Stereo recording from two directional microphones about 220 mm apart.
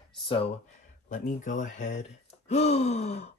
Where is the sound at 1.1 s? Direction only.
35° left (ahead or behind).